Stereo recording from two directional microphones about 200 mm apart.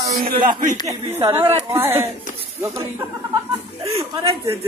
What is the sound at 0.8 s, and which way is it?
A woman's voice, 15° right (ahead or behind).